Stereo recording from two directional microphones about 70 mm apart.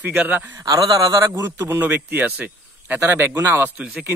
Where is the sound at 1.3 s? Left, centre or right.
Right.